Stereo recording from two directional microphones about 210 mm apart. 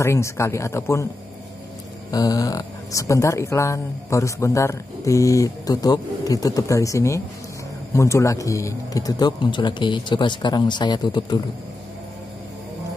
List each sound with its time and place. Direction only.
0.0 s speech: 15° left (ahead or behind)
2.0 s speech: 15° left (ahead or behind)